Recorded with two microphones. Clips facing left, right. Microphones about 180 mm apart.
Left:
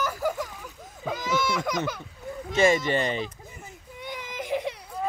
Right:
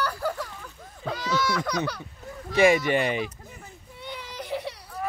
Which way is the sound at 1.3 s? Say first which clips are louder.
Even; 20° left (ahead or behind).